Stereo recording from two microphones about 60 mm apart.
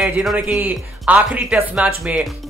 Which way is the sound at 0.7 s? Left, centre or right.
Right.